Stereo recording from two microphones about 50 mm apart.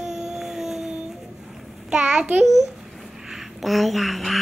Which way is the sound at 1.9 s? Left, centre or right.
Right.